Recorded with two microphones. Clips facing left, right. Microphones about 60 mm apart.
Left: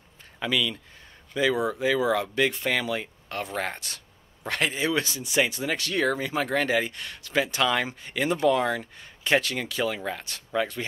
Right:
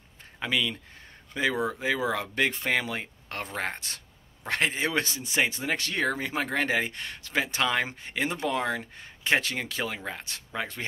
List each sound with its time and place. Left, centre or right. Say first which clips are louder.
0.4 s speech: left 2 dB; right
3.5 s speech: left 1 dB; centre
4.5 s speech: left 1 dB; right